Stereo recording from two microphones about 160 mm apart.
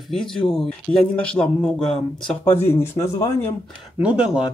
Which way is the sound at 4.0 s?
5° right (ahead or behind).